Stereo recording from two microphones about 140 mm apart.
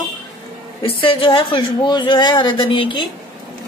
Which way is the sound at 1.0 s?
40° left (ahead or behind).